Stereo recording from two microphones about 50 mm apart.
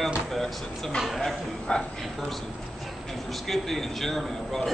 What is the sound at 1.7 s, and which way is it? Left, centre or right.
Speech, left.